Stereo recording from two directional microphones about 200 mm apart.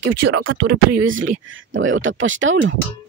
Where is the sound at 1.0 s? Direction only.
75° right (ahead or behind).